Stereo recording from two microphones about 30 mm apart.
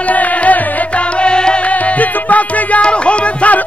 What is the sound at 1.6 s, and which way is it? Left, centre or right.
Music, left.